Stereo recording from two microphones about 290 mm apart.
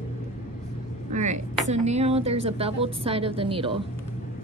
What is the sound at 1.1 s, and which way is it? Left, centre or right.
Speech, right.